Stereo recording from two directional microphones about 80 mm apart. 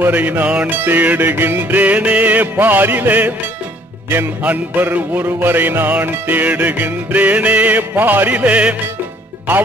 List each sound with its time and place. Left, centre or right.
0.0 s music: right